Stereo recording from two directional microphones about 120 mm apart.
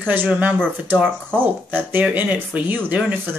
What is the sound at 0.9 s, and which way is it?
Speech, 10° left (ahead or behind).